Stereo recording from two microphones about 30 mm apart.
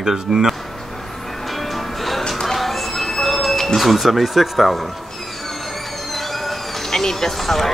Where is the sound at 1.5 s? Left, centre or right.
Centre.